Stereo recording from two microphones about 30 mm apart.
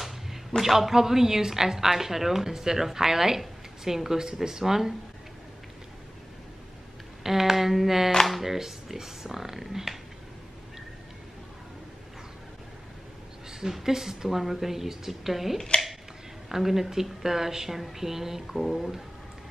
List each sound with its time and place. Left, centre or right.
0.6 s a woman's voice: centre
7.2 s a sound: centre
8.3 s a woman's voice: centre
13.5 s a sound: centre
13.8 s a woman's voice: centre
15.7 s speech: left
16.4 s a woman's voice: centre